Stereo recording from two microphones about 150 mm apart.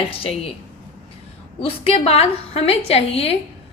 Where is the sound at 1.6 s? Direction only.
40° left (ahead or behind).